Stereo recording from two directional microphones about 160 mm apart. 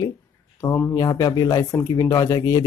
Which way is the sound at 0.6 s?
15° left (ahead or behind).